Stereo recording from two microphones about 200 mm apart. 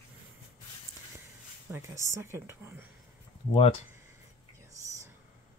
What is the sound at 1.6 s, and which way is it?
A woman's voice, 10° right (ahead or behind).